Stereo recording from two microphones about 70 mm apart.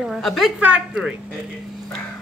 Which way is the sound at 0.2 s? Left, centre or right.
Centre.